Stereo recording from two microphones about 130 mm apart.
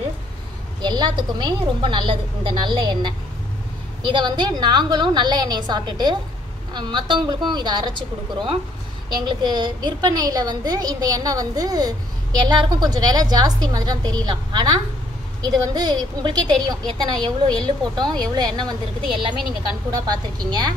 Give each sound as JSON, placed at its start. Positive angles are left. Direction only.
{"t": 0.8, "sound": "a woman's voice", "side_deg": -35}
{"t": 19.9, "sound": "a woman's voice", "side_deg": -30}